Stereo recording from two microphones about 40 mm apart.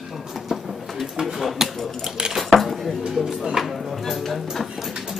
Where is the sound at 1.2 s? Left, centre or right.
Centre.